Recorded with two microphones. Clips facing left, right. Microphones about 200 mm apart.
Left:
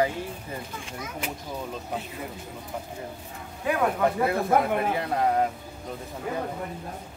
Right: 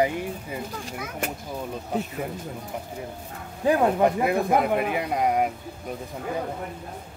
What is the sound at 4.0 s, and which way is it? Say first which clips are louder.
Speech: right 3 dB; 15° right (ahead or behind).